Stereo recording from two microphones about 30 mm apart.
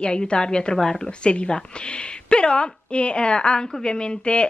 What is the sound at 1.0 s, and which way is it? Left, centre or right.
Speech, left.